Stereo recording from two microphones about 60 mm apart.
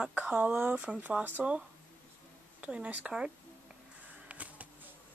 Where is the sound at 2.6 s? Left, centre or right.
Centre.